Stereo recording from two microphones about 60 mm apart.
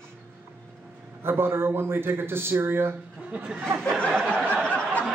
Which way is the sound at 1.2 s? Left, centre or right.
Right.